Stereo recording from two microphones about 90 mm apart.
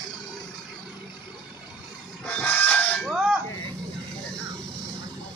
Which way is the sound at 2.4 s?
20° left (ahead or behind).